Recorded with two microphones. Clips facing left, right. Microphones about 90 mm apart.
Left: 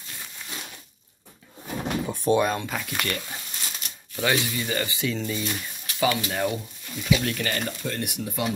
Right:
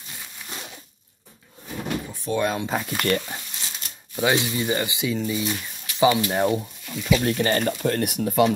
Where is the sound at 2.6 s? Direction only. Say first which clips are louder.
Right 5 dB; 25° right (ahead or behind).